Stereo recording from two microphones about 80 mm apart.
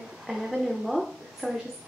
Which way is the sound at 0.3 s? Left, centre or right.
Centre.